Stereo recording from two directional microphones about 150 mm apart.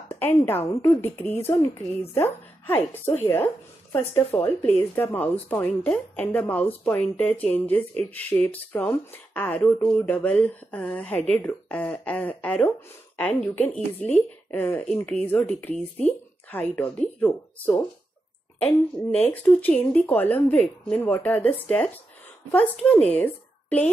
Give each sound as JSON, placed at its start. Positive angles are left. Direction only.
{"t": 0.1, "sound": "a woman's voice", "side_deg": 15}
{"t": 19.1, "sound": "a woman's voice", "side_deg": 10}